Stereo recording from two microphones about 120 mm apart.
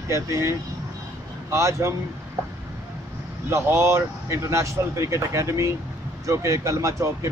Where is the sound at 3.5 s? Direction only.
20° right (ahead or behind).